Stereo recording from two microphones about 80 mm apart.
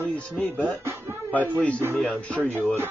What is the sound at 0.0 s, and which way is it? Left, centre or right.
Music, left.